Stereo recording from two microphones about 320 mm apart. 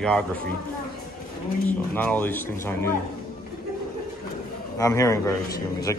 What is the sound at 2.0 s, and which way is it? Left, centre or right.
Speech, centre.